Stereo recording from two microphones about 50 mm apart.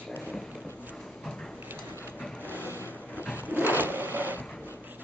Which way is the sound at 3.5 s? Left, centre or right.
Right.